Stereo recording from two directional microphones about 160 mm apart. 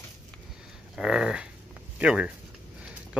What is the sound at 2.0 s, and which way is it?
Speech, 5° right (ahead or behind).